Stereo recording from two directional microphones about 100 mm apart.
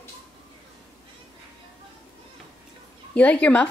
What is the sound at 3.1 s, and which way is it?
Speech, 15° left (ahead or behind).